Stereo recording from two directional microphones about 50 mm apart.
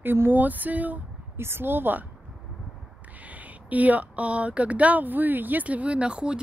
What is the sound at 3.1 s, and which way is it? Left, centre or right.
Speech, right.